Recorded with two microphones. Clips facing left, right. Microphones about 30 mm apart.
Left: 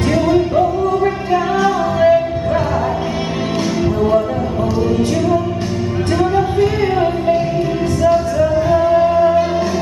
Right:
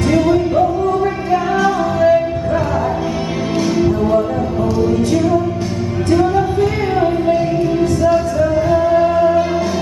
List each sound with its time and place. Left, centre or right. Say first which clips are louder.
0.6 s music: even; centre
1.6 s music: even; left
8.5 s music: even; centre